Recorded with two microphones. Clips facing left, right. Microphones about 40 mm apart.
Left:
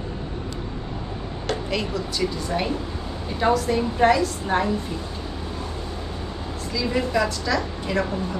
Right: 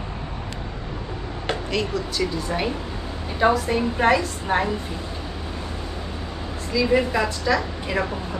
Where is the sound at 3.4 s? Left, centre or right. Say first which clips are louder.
Right 1 dB; centre.